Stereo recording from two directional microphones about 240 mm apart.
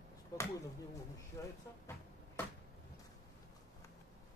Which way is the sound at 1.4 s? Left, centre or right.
Centre.